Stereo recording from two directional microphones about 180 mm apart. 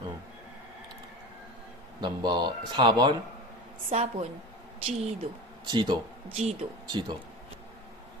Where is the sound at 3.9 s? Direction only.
35° right (ahead or behind).